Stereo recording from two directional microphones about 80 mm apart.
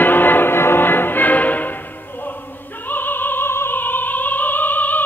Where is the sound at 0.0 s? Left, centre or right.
Left.